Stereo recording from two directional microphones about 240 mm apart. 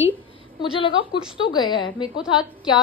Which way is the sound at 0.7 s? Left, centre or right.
Left.